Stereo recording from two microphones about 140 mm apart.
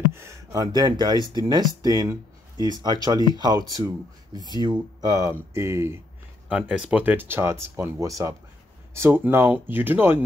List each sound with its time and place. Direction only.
0.1 s speech: 20° right (ahead or behind)
6.5 s speech: 5° right (ahead or behind)